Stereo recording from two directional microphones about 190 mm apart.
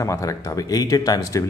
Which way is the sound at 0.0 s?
15° left (ahead or behind).